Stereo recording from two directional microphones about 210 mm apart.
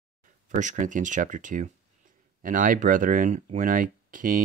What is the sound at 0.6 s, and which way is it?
Speech, 35° right (ahead or behind).